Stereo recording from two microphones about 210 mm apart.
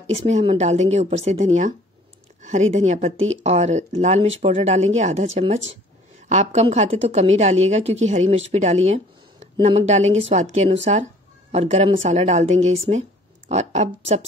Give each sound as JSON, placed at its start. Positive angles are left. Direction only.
{"t": 0.1, "sound": "a woman's voice", "side_deg": -30}